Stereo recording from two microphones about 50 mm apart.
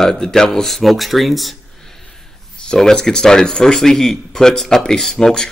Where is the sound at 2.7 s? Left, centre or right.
Centre.